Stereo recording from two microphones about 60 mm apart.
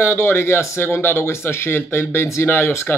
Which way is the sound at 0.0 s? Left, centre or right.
Left.